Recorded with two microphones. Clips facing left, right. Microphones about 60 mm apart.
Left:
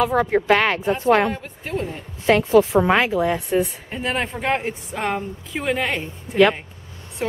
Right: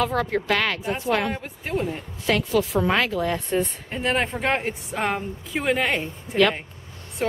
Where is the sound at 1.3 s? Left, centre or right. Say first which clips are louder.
Even; centre.